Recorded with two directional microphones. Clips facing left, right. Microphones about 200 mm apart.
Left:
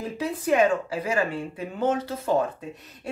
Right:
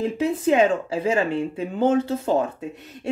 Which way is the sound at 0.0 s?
25° right (ahead or behind).